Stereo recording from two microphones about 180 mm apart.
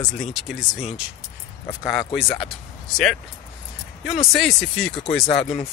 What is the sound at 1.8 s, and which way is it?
Speech, 25° left (ahead or behind).